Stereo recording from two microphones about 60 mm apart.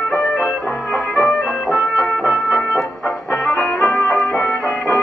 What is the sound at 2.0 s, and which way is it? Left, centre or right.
Music, left.